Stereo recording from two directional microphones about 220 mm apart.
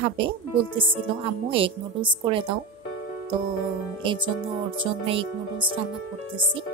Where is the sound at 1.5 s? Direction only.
25° right (ahead or behind).